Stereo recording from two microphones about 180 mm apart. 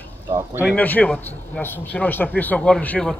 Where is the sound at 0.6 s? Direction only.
5° left (ahead or behind).